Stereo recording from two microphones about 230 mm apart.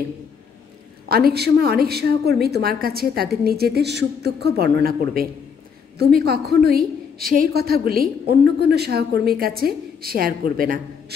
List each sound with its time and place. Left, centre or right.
1.0 s a woman's voice: right